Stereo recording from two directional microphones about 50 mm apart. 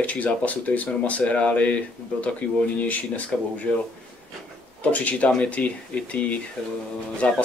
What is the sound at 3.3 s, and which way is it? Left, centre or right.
Speech, centre.